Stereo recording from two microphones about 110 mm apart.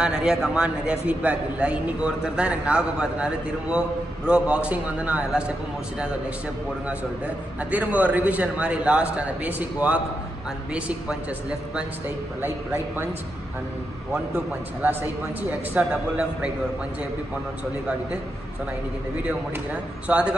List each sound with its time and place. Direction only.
0.0 s a man's voice: 5° right (ahead or behind)
6.9 s a man's voice: 10° right (ahead or behind)
14.1 s a man's voice: 20° right (ahead or behind)
19.2 s a man's voice: 10° right (ahead or behind)